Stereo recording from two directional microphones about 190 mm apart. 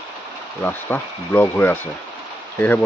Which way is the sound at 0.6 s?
10° left (ahead or behind).